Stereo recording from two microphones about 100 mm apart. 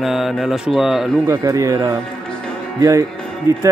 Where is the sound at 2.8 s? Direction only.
35° right (ahead or behind).